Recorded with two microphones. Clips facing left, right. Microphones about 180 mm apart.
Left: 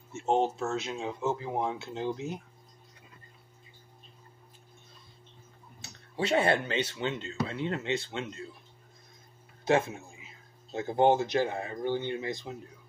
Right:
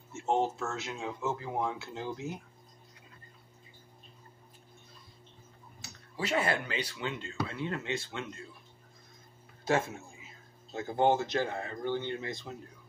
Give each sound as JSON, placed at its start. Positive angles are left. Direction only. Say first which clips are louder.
{"t": 0.1, "sound": "speech", "louder": "left 3 dB", "side_deg": 20}
{"t": 5.8, "sound": "speech", "louder": "left 5 dB", "side_deg": 25}
{"t": 9.7, "sound": "speech", "louder": "left 4 dB", "side_deg": 20}